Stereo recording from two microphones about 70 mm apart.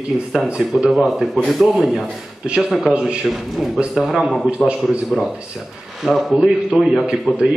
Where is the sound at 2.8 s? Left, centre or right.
Centre.